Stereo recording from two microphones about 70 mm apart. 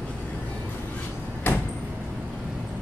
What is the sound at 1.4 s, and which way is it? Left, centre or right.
Vehicle, left.